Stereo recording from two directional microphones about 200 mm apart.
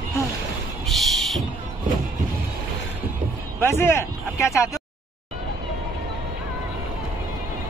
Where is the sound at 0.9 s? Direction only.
Centre (ahead or behind).